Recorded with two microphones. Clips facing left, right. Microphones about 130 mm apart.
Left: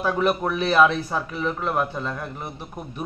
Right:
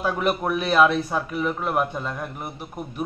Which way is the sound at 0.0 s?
5° right (ahead or behind).